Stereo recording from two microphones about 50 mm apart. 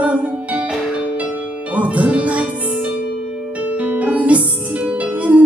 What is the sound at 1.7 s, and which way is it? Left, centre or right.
Music, right.